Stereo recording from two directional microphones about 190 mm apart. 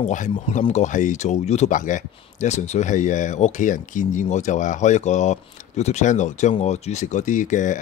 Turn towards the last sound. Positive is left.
turn(degrees=40)  # may be behind; listen again after turning